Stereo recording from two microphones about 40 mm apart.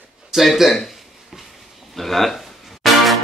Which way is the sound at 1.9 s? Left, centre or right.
Centre.